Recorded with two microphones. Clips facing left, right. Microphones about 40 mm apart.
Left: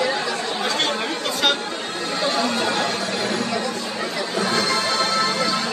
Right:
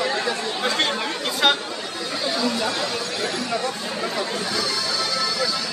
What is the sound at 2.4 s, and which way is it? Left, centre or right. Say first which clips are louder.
Speech: even; left.